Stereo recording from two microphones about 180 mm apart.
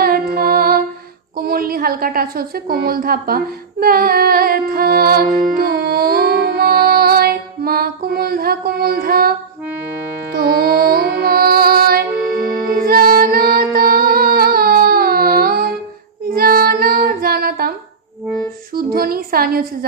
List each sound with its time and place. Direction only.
0.0 s music: 55° right (ahead or behind)
1.4 s a woman's voice: 55° right (ahead or behind)
10.3 s music: 55° right (ahead or behind)
16.3 s child singing: 55° right (ahead or behind)
18.8 s a sound: 55° right (ahead or behind)